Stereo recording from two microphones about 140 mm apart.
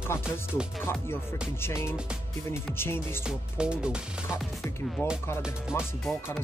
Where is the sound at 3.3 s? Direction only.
5° right (ahead or behind).